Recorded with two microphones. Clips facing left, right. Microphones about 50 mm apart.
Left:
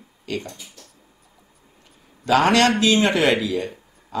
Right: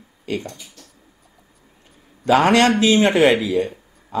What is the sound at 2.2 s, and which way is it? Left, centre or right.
Speech, right.